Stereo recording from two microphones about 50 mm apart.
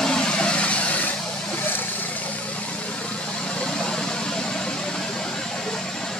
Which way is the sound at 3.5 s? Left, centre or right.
Centre.